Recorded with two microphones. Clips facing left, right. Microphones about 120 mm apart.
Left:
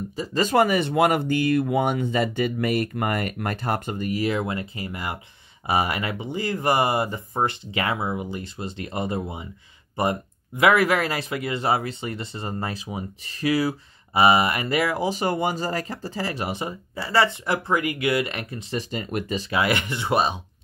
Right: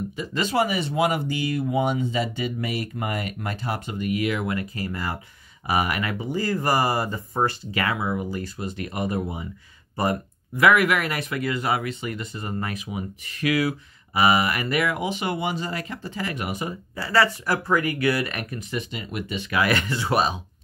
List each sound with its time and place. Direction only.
0.1 s speech: 35° left (ahead or behind)
10.6 s speech: 30° left (ahead or behind)
19.5 s speech: 20° left (ahead or behind)